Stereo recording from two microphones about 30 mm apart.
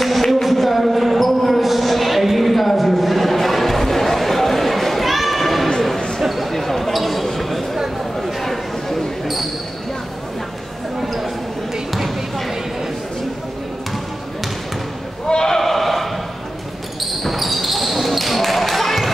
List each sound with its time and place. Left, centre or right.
0.3 s basketball bounce: centre
5.9 s a sound: left
6.2 s basketball bounce: centre
11.0 s a sound: centre
15.2 s sheep: left
15.5 s sheep: centre
17.0 s basketball bounce: centre